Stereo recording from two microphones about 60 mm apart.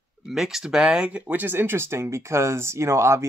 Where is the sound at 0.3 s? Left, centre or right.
Centre.